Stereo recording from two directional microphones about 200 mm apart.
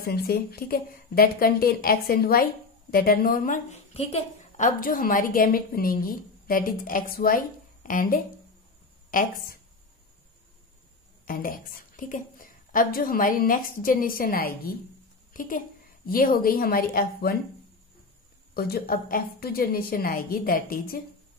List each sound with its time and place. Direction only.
0.0 s a woman's voice: 50° left (ahead or behind)
11.2 s a woman's voice: 45° left (ahead or behind)
18.5 s a woman's voice: 50° left (ahead or behind)